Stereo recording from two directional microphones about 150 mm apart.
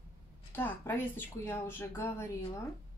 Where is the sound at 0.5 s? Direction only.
15° left (ahead or behind).